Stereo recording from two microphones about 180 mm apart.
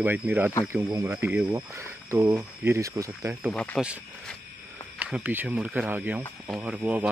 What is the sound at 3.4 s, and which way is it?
Speech, 5° left (ahead or behind).